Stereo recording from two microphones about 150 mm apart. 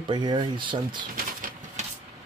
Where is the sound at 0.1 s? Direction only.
30° right (ahead or behind).